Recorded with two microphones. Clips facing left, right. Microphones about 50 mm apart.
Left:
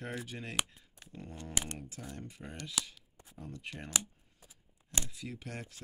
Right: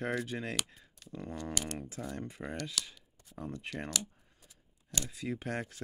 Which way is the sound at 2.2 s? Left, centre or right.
Right.